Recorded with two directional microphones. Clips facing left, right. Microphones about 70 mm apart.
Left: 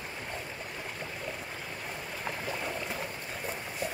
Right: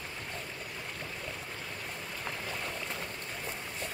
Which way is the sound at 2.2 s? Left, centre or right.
Centre.